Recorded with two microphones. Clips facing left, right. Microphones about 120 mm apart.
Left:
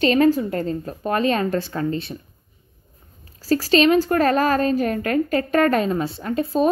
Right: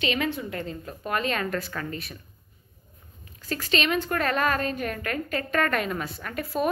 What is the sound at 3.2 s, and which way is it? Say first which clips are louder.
A woman's voice: left 11 dB; 35° left (ahead or behind).